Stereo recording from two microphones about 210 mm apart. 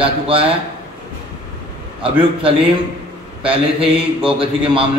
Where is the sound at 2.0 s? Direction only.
25° right (ahead or behind).